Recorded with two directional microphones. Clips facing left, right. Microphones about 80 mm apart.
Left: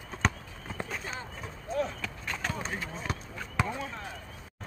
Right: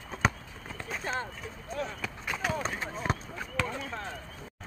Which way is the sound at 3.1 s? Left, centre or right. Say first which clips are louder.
Right 5 dB; right.